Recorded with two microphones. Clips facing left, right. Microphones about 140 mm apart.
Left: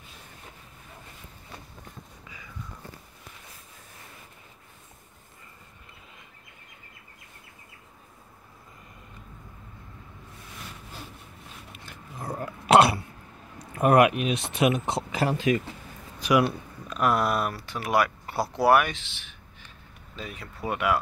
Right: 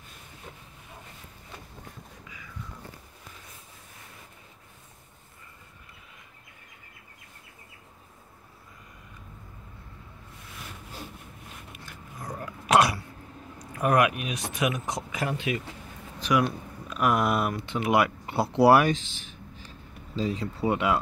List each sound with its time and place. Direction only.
11.7 s a sound: 30° left (ahead or behind)
13.6 s speech: 25° left (ahead or behind)
16.2 s speech: 5° left (ahead or behind)
17.1 s speech: 20° right (ahead or behind)
20.2 s speech: 25° right (ahead or behind)